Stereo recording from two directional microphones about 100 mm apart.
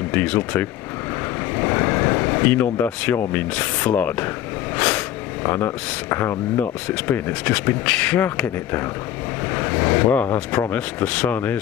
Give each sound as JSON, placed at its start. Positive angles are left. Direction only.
{"t": 0.1, "sound": "speech", "side_deg": 15}
{"t": 1.6, "sound": "vehicle", "side_deg": 25}
{"t": 3.2, "sound": "speech", "side_deg": 20}
{"t": 4.7, "sound": "a sound", "side_deg": 10}
{"t": 5.4, "sound": "speech", "side_deg": 25}
{"t": 9.5, "sound": "vehicle", "side_deg": 25}
{"t": 10.7, "sound": "speech", "side_deg": 15}